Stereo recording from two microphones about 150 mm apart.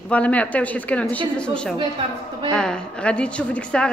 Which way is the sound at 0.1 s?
10° left (ahead or behind).